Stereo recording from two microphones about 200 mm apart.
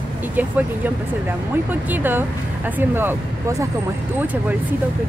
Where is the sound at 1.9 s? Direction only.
10° right (ahead or behind).